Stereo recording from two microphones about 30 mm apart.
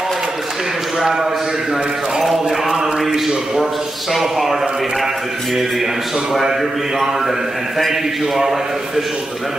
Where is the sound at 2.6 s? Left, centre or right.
Centre.